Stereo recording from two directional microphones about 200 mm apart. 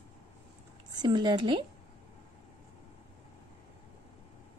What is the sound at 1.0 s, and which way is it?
Speech, 20° right (ahead or behind).